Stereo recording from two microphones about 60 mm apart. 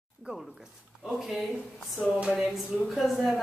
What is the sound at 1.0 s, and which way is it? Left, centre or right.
Speech, centre.